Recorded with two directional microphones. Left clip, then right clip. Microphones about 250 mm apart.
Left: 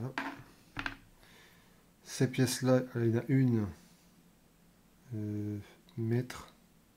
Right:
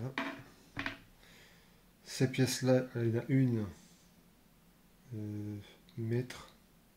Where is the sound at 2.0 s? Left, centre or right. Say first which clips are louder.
Left 1 dB; centre.